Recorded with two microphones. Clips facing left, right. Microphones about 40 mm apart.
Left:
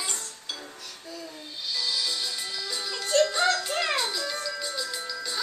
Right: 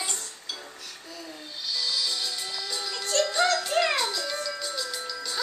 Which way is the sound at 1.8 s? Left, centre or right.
Left.